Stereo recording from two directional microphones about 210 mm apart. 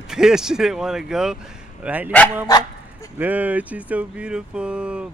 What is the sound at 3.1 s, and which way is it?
Speech, 5° right (ahead or behind).